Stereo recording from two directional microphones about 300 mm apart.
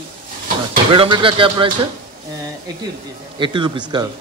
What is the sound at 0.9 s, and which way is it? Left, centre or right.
Speech, centre.